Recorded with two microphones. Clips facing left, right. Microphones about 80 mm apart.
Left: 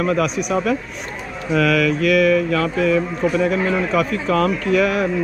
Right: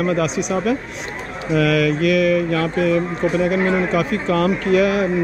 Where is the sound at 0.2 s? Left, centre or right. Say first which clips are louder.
Even; left.